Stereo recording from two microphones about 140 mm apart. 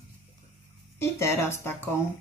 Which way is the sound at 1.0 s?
20° left (ahead or behind).